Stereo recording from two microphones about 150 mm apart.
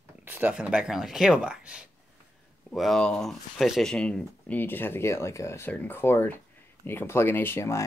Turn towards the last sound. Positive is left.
turn(degrees=20)  # may be behind; listen again after turning